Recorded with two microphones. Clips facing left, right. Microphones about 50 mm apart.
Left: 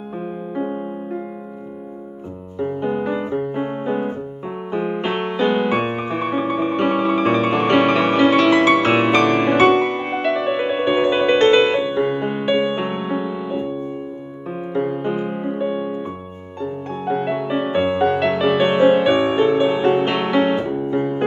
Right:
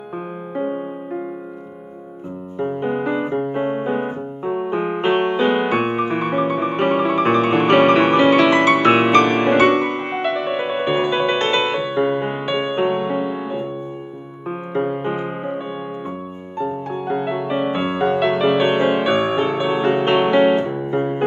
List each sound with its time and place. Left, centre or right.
0.6 s music: centre
2.6 s keyboard: centre
6.0 s music: centre
8.3 s music: centre
10.4 s music: centre
11.3 s music: centre
14.7 s music: centre
15.6 s music: centre
17.1 s music: centre
18.0 s music: centre
20.6 s music: centre
20.9 s music: centre